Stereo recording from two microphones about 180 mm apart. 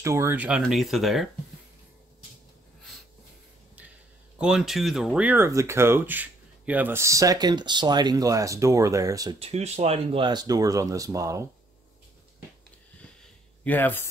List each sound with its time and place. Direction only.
0.0 s speech: 15° right (ahead or behind)
4.4 s speech: 5° right (ahead or behind); by 9.4 s 20° right (ahead or behind)
9.4 s speech: 35° right (ahead or behind); by 11.4 s 20° right (ahead or behind)
13.2 s a sound: 10° left (ahead or behind)